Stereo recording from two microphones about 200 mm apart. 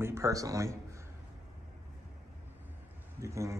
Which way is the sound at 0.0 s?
15° right (ahead or behind).